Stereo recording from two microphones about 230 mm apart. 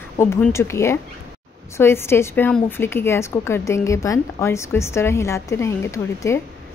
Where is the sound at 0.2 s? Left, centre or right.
Centre.